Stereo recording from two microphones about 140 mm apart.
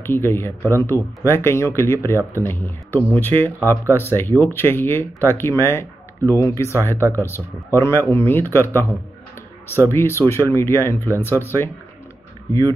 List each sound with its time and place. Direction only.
0.0 s speech: 15° left (ahead or behind)